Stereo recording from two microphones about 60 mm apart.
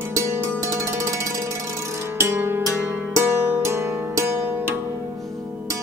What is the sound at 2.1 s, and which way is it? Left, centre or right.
Music, right.